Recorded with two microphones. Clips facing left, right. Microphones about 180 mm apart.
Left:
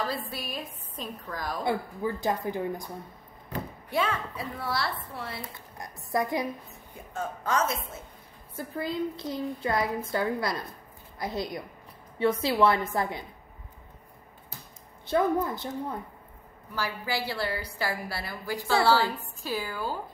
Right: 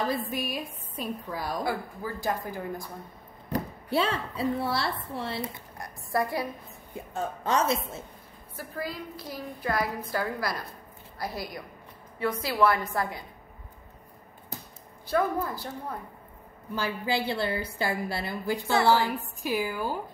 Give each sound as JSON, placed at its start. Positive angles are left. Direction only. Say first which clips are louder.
{"t": 0.3, "sound": "a woman's voice", "louder": "right 4 dB", "side_deg": -15}
{"t": 1.6, "sound": "a woman's voice", "louder": "left 2 dB", "side_deg": 25}
{"t": 3.5, "sound": "a woman's voice", "louder": "right 2 dB", "side_deg": -30}
{"t": 5.8, "sound": "a woman's voice", "louder": "even", "side_deg": 20}
{"t": 7.4, "sound": "a woman's voice", "louder": "right 2 dB", "side_deg": -25}
{"t": 8.5, "sound": "a woman's voice", "louder": "left 4 dB", "side_deg": 25}
{"t": 15.0, "sound": "a woman's voice", "louder": "left 2 dB", "side_deg": 20}
{"t": 16.7, "sound": "a woman's voice", "louder": "right 3 dB", "side_deg": -25}